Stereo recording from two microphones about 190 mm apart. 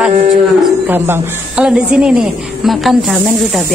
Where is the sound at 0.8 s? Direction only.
10° right (ahead or behind).